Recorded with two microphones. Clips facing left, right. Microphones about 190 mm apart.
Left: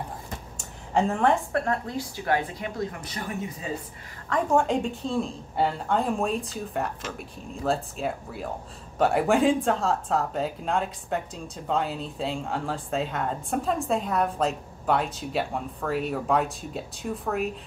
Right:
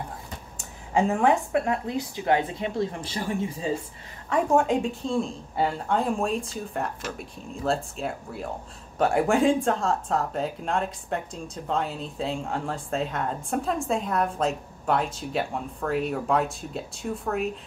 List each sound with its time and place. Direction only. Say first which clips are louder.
0.9 s a woman's voice: right 1 dB; 10° right (ahead or behind); by 3.7 s 30° right (ahead or behind)
4.3 s speech: right 1 dB; 5° right (ahead or behind)